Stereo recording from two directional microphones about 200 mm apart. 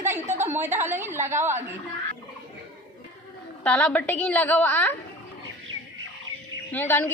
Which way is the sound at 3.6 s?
5° left (ahead or behind).